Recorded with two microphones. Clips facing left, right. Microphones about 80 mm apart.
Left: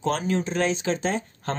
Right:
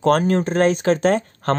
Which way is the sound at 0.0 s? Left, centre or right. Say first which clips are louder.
Right 8 dB; right.